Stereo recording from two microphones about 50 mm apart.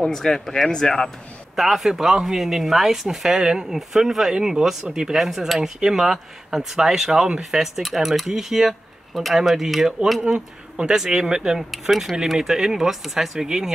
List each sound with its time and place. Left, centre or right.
0.0 s speech: centre
1.6 s speech: centre
10.2 s speech: right